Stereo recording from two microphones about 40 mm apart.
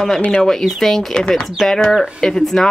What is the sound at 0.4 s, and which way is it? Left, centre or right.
Speech, centre.